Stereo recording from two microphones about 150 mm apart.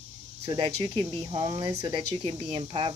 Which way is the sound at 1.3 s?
30° right (ahead or behind).